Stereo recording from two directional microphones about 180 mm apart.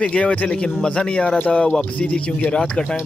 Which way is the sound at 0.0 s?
5° left (ahead or behind).